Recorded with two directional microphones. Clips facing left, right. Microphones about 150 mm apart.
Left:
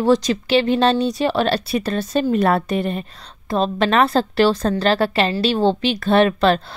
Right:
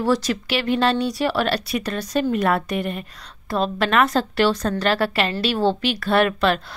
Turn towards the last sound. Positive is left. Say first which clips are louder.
# left 4 dB
turn(degrees=30)  # may be behind; listen again after turning